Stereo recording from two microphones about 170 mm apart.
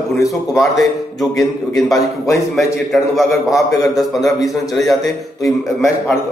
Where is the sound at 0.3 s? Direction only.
Centre (ahead or behind).